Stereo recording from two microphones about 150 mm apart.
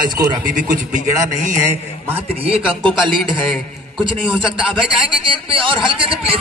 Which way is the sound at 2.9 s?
Centre (ahead or behind).